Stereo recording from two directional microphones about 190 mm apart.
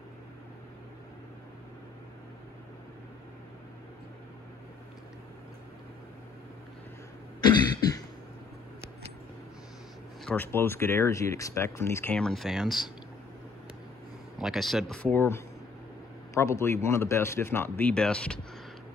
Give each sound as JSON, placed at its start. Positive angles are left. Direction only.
{"t": 7.4, "sound": "cough", "side_deg": 20}
{"t": 10.2, "sound": "speech", "side_deg": 10}
{"t": 14.4, "sound": "speech", "side_deg": 0}